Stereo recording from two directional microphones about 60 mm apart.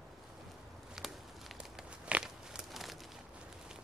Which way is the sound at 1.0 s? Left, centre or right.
Centre.